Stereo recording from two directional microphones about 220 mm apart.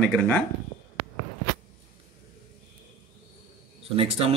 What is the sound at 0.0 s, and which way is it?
Speech, 5° left (ahead or behind).